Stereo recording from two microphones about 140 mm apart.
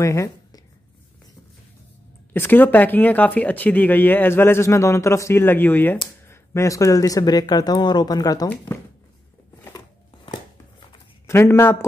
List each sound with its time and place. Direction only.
0.0 s speech: 20° left (ahead or behind)
2.3 s speech: 15° left (ahead or behind)
11.2 s speech: 20° left (ahead or behind)